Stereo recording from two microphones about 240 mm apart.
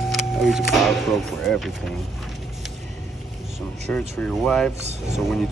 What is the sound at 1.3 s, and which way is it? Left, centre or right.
Speech, centre.